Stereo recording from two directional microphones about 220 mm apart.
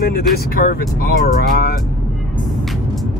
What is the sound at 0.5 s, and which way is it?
Speech, 45° left (ahead or behind).